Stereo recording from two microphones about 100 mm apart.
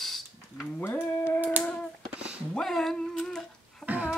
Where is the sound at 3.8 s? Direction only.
15° right (ahead or behind).